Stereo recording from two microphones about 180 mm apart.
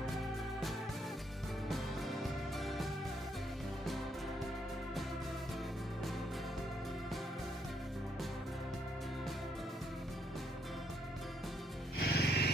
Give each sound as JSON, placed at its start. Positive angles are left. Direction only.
{"t": 0.0, "sound": "music", "side_deg": 0}
{"t": 12.0, "sound": "music", "side_deg": 60}